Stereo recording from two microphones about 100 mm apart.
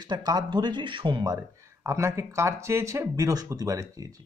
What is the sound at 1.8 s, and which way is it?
Speech, 30° right (ahead or behind).